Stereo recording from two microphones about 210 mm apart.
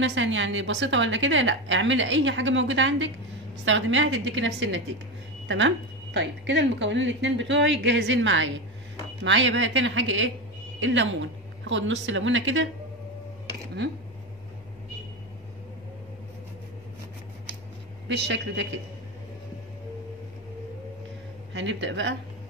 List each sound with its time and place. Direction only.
0.0 s a woman's voice: 65° right (ahead or behind)
6.1 s a woman's voice: 60° right (ahead or behind)
18.0 s a woman's voice: 55° right (ahead or behind)
21.5 s a woman's voice: 60° right (ahead or behind)